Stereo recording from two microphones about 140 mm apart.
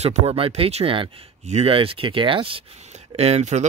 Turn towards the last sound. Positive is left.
turn(degrees=-55)  # may be behind; listen again after turning